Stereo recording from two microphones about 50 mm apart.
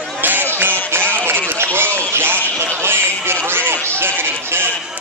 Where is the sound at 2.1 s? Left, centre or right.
Right.